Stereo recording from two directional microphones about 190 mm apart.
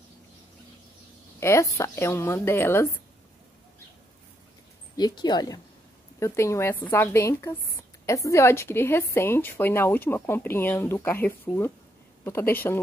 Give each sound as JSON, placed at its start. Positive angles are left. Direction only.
{"t": 1.4, "sound": "a woman's voice", "side_deg": 15}
{"t": 4.9, "sound": "a woman's voice", "side_deg": 20}